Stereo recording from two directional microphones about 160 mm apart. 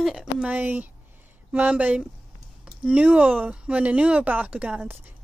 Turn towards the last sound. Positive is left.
turn(degrees=-10)  # may be behind; listen again after turning